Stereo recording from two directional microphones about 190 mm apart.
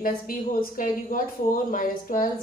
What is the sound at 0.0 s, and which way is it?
Speech, 50° left (ahead or behind).